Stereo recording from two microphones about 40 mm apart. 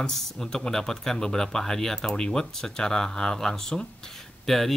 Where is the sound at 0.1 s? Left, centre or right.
Centre.